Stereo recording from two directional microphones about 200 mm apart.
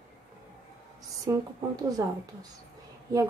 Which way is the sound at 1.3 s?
15° right (ahead or behind).